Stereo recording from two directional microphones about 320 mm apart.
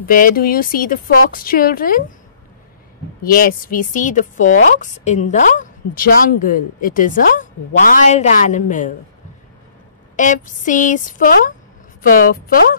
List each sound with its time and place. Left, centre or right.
0.0 s a woman's voice: left
3.2 s a woman's voice: left
10.1 s a woman's voice: left